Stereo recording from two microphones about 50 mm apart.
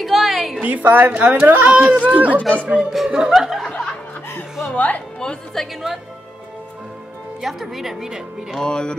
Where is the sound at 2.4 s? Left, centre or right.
Left.